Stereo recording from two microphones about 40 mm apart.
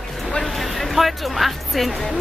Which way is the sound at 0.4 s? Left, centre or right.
Centre.